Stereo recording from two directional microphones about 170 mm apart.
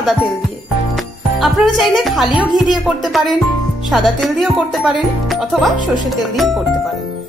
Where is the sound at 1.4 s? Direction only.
Centre (ahead or behind).